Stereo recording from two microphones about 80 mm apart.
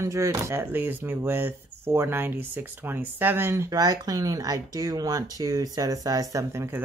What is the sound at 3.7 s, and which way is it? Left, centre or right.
Speech, right.